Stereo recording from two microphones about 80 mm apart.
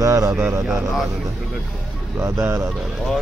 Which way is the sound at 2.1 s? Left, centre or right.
Right.